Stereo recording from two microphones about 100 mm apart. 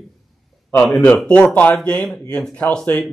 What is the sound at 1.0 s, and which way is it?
Speech, 10° left (ahead or behind).